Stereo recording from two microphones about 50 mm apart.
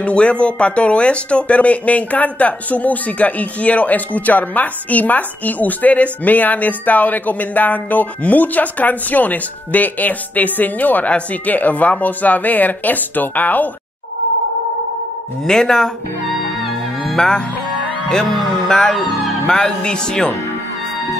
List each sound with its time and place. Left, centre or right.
0.0 s speech: left
15.4 s speech: centre
16.6 s music: centre
18.7 s speech: centre